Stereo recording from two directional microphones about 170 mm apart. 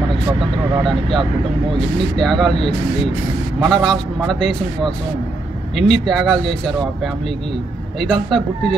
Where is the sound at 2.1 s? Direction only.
Centre (ahead or behind).